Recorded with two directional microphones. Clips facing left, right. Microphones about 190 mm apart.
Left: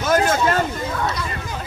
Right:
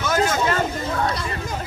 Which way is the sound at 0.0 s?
50° left (ahead or behind).